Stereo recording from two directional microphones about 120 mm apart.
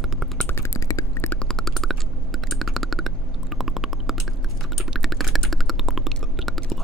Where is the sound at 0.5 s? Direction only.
25° left (ahead or behind).